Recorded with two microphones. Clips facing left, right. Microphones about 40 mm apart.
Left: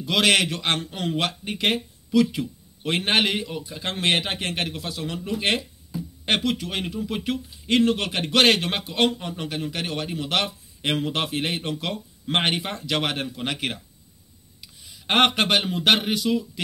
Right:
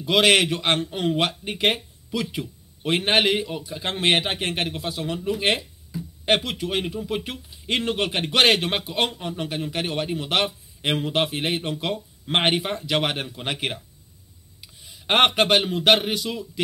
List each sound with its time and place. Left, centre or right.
0.0 s speech: centre